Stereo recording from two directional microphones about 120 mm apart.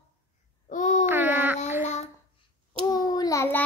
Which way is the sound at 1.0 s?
15° right (ahead or behind).